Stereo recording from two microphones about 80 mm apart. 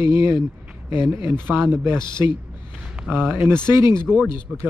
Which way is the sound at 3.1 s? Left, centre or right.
Centre.